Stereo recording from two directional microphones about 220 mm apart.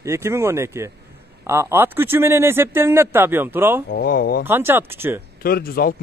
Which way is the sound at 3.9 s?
45° left (ahead or behind).